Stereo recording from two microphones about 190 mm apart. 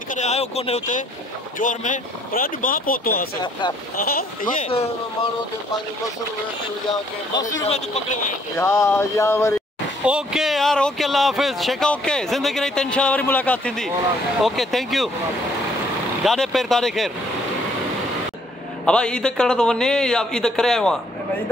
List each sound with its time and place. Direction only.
0.1 s speech: 35° left (ahead or behind)
4.6 s speech: 30° left (ahead or behind)
8.5 s a sound: 15° left (ahead or behind)
10.0 s speech: 5° right (ahead or behind)
16.3 s speech: centre (ahead or behind)
18.9 s speech: 5° left (ahead or behind)